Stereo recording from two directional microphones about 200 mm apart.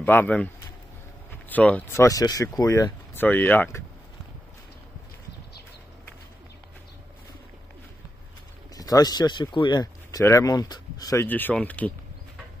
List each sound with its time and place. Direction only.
0.0 s speech: 10° left (ahead or behind)
1.5 s speech: 5° left (ahead or behind)
8.7 s speech: 20° left (ahead or behind)